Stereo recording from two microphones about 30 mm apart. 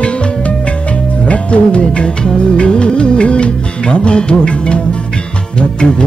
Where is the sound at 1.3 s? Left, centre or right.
Left.